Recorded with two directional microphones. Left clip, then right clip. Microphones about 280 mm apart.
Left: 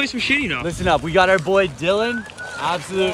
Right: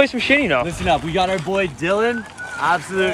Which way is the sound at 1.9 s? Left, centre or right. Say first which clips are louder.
Right 1 dB; centre.